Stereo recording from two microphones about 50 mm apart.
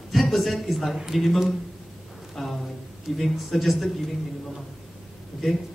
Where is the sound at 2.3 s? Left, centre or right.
Centre.